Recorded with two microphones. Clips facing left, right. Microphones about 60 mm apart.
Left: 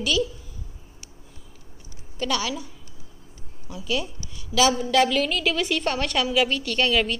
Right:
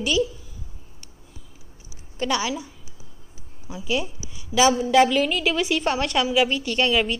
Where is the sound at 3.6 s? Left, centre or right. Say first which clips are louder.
Right 2 dB; centre.